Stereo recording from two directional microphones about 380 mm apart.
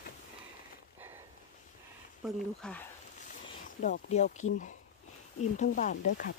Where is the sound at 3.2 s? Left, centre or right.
Left.